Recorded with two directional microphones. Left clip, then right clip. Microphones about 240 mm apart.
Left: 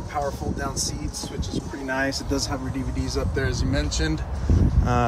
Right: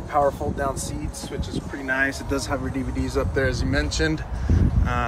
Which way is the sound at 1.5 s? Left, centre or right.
Centre.